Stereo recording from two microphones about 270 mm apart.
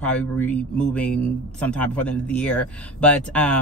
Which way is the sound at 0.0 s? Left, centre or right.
Centre.